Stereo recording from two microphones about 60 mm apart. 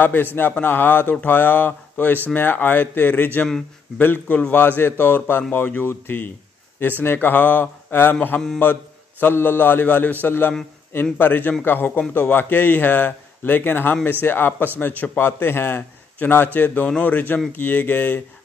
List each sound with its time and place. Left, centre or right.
0.0 s a man's voice: left